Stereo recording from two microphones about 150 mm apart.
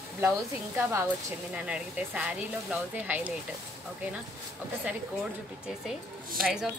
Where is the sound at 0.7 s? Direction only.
15° right (ahead or behind).